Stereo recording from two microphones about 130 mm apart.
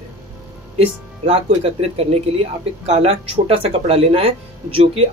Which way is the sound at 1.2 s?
50° right (ahead or behind).